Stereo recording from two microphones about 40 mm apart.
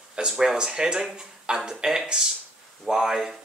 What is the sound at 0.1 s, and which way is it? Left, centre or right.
Speech, centre.